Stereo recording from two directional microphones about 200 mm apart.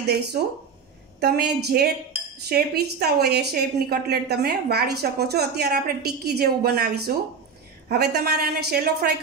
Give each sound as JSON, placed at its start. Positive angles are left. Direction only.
{"t": 1.2, "sound": "a woman's voice", "side_deg": -50}